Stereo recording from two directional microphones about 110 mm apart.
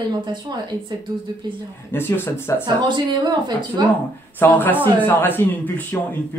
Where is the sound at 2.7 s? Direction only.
45° right (ahead or behind).